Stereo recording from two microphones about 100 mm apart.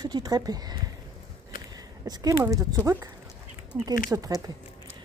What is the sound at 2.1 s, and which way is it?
Speech, 35° right (ahead or behind).